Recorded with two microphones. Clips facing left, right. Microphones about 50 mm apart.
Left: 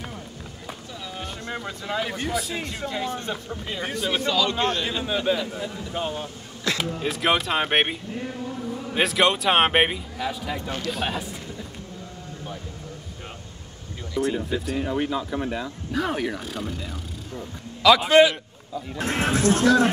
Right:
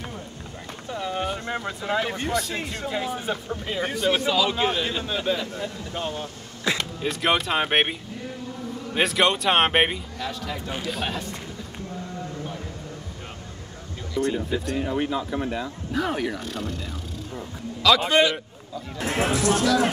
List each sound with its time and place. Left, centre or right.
0.9 s boat: right
1.5 s speech: centre
5.0 s speech: centre
6.7 s music: centre
7.0 s speech: centre
14.1 s speech: centre
19.2 s speech: left